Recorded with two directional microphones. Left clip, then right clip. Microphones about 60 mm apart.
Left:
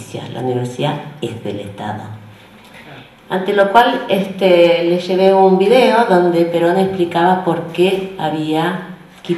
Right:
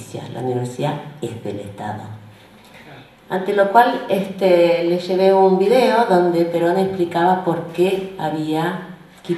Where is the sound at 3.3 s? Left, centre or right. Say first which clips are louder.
Left 3 dB; right.